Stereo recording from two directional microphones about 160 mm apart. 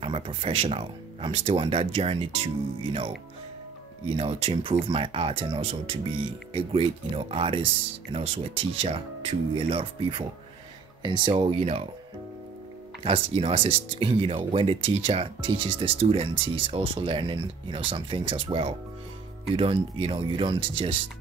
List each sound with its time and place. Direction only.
0.0 s speech: 35° right (ahead or behind)
4.2 s speech: 35° right (ahead or behind)
13.0 s speech: 35° right (ahead or behind)